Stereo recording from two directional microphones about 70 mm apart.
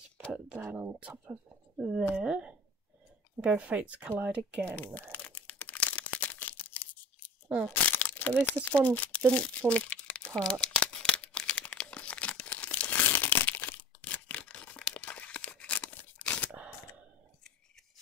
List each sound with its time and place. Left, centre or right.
0.6 s speech: right
0.8 s speech: centre
4.6 s crumpling: left
16.5 s camera: right